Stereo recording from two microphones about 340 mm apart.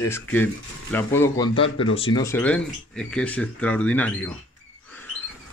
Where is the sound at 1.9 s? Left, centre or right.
Centre.